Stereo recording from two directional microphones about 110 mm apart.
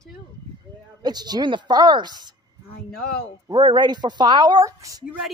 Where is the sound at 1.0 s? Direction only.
40° right (ahead or behind).